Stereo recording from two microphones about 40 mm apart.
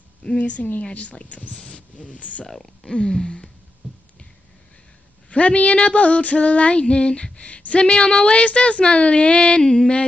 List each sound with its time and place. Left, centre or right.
0.4 s a woman's voice: left
1.7 s a sound: left
2.4 s speech: centre
5.3 s female singing: left
9.6 s speech: centre